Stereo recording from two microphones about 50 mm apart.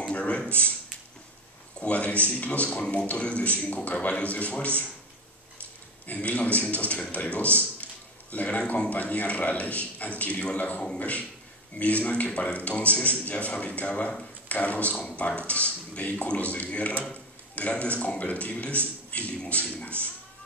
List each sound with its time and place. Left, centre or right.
0.0 s a sound: left
1.8 s speech: left
6.0 s speech: left